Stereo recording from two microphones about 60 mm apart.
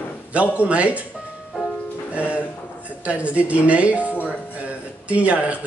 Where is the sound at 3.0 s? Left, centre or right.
Right.